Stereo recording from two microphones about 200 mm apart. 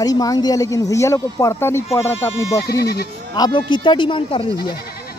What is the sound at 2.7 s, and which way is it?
Speech, 55° left (ahead or behind).